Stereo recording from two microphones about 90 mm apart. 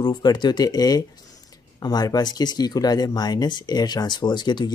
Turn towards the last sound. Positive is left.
turn(degrees=55)  # may be behind; listen again after turning